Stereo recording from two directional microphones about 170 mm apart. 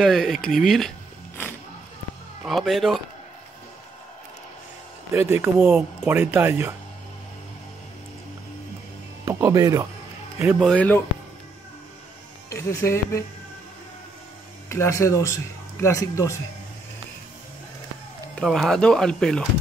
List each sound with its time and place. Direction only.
0.0 s speech: centre (ahead or behind)
2.4 s speech: centre (ahead or behind)
5.1 s speech: 15° right (ahead or behind)
9.2 s speech: 20° right (ahead or behind)
10.6 s speech: 5° left (ahead or behind)
12.4 s speech: 20° left (ahead or behind)
14.7 s speech: 15° left (ahead or behind)
18.3 s speech: 5° left (ahead or behind)